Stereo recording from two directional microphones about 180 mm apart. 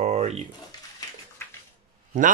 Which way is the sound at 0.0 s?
35° right (ahead or behind).